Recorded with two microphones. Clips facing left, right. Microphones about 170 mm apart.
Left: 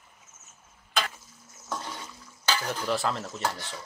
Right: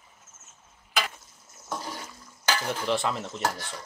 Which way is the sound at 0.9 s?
10° right (ahead or behind).